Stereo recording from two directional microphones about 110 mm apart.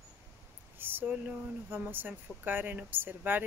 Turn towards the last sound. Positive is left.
turn(degrees=-15)  # may be behind; listen again after turning